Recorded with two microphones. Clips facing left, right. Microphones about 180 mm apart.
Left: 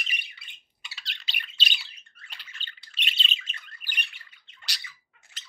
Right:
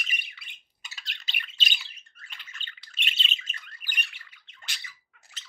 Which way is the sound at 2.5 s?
35° left (ahead or behind).